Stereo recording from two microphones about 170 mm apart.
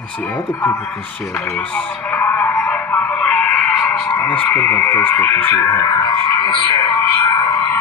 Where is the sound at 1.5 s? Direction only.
10° left (ahead or behind).